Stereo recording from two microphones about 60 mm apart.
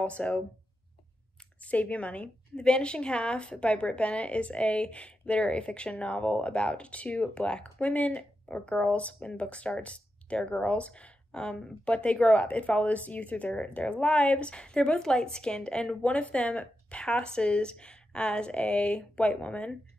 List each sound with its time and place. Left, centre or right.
0.0 s a woman's voice: left
1.6 s a woman's voice: left